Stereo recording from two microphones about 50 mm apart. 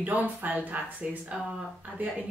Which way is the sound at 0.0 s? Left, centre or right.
Right.